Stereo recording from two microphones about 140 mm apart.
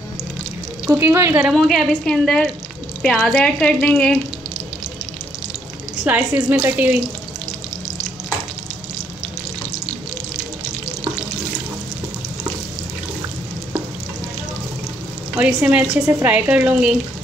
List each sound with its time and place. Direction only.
0.8 s speech: 15° right (ahead or behind)
1.4 s a woman's voice: centre (ahead or behind)
6.0 s speech: 15° right (ahead or behind)
15.3 s speech: 10° right (ahead or behind)